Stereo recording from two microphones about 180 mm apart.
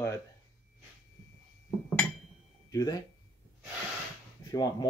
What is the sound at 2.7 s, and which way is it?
Speech, 20° left (ahead or behind).